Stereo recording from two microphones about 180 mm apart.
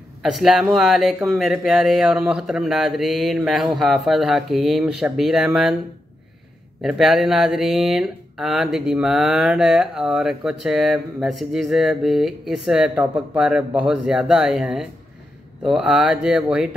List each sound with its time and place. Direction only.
0.2 s speech: centre (ahead or behind)
6.8 s speech: centre (ahead or behind)